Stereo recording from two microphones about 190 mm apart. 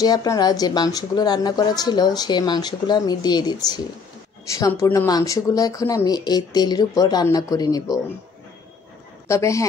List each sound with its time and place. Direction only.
0.0 s a woman's voice: 20° left (ahead or behind)
9.3 s speech: 15° left (ahead or behind)